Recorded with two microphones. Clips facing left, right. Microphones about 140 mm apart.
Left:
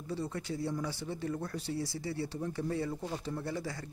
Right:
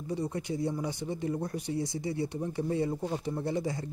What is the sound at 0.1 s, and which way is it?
Speech, 15° right (ahead or behind).